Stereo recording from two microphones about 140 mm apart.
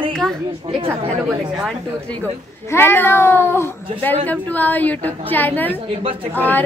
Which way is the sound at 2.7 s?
15° left (ahead or behind).